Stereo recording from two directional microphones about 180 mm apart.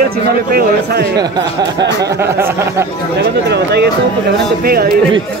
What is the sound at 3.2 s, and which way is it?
Speech, 70° right (ahead or behind).